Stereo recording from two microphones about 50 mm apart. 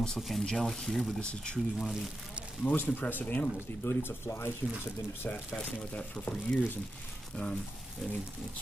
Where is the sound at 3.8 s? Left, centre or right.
Left.